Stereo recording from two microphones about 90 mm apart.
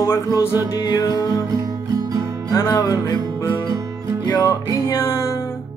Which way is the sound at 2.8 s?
45° left (ahead or behind).